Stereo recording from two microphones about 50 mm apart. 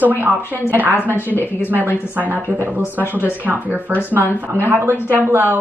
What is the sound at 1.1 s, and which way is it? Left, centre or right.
Speech, left.